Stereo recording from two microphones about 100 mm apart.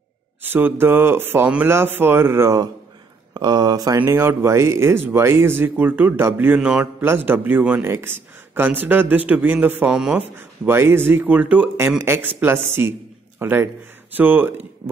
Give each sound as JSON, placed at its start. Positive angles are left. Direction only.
{"t": 0.4, "sound": "speech", "side_deg": -20}
{"t": 3.3, "sound": "speech", "side_deg": -45}
{"t": 4.0, "sound": "speech", "side_deg": -25}
{"t": 6.6, "sound": "speech", "side_deg": -10}
{"t": 7.0, "sound": "speech", "side_deg": -20}
{"t": 10.7, "sound": "speech", "side_deg": -25}
{"t": 12.0, "sound": "a man's voice", "side_deg": -25}